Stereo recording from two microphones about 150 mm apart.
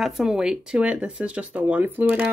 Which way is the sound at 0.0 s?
5° right (ahead or behind).